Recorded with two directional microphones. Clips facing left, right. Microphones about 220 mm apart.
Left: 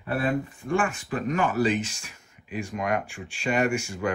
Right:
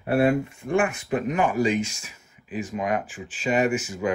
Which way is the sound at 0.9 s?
15° right (ahead or behind).